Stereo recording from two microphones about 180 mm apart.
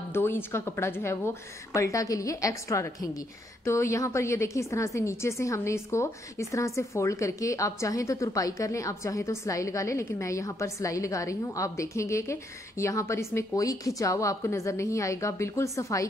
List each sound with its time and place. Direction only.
0.1 s a woman's voice: 15° left (ahead or behind)